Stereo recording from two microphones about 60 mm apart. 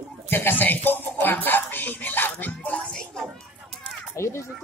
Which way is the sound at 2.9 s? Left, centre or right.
Centre.